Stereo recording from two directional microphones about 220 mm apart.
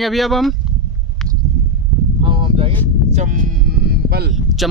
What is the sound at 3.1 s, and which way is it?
Sheep, 35° right (ahead or behind).